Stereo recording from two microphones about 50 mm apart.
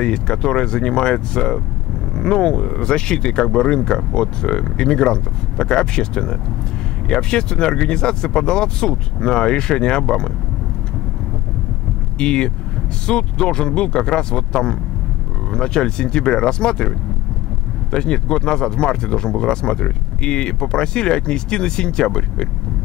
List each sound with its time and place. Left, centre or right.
0.0 s speech: centre
12.2 s speech: centre
17.9 s speech: centre